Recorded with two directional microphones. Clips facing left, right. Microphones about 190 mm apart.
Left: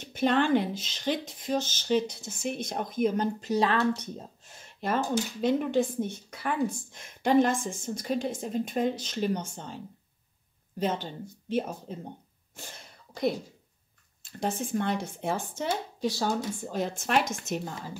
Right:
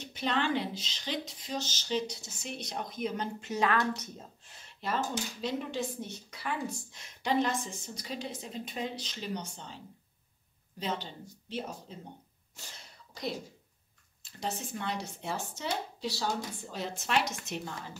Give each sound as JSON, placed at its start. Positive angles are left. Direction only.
{"t": 0.0, "sound": "speech", "side_deg": 50}
{"t": 4.5, "sound": "speech", "side_deg": 50}
{"t": 10.8, "sound": "speech", "side_deg": 50}
{"t": 12.5, "sound": "sneeze", "side_deg": 55}
{"t": 14.2, "sound": "speech", "side_deg": 50}